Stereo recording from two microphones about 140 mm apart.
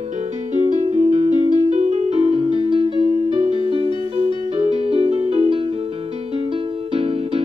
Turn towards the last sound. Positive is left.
turn(degrees=-45)  # may be behind; listen again after turning